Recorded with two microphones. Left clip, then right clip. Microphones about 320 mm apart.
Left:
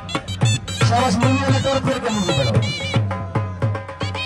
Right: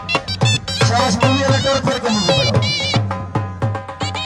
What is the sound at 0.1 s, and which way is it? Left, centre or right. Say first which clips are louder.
Music: right 6 dB; right.